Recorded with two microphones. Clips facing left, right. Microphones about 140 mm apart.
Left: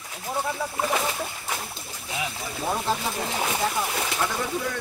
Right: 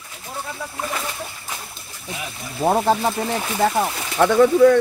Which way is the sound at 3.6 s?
70° right (ahead or behind).